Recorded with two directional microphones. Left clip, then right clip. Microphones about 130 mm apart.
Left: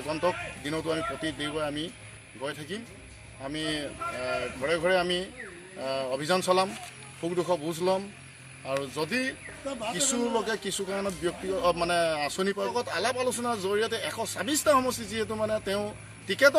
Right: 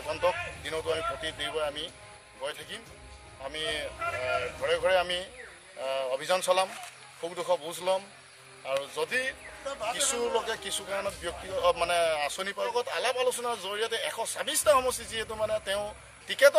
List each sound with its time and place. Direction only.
0.1 s speech: 20° right (ahead or behind)
3.4 s a man's voice: 20° right (ahead or behind)
9.7 s speech: 15° left (ahead or behind)
9.9 s a man's voice: 20° right (ahead or behind)
12.7 s speech: 30° right (ahead or behind)